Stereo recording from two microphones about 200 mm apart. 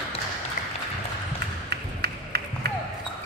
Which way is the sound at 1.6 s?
55° right (ahead or behind).